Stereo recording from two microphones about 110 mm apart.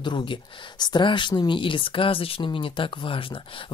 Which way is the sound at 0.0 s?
45° left (ahead or behind).